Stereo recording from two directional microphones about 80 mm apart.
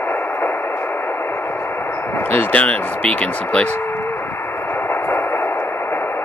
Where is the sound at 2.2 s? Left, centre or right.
Centre.